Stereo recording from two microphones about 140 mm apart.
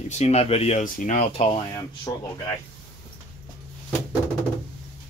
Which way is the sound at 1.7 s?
25° left (ahead or behind).